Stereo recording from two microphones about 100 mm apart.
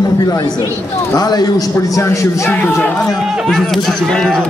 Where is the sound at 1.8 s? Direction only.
30° left (ahead or behind).